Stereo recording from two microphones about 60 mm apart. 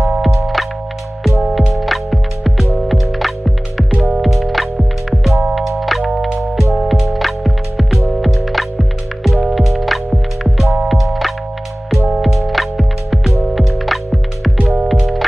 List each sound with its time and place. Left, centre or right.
0.2 s music: centre